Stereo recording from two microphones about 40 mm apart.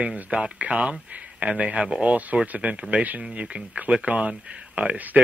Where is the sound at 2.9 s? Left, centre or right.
Right.